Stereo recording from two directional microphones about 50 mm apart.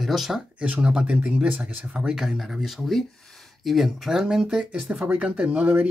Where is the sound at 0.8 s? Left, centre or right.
Centre.